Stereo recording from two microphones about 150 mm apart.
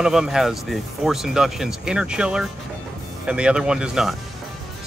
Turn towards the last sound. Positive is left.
turn(degrees=-5)  # may be behind; listen again after turning